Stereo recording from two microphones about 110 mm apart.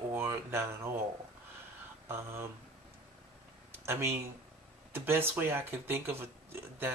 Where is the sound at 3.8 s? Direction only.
20° right (ahead or behind).